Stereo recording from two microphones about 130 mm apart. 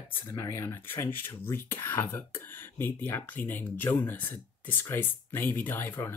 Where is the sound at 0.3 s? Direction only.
25° left (ahead or behind).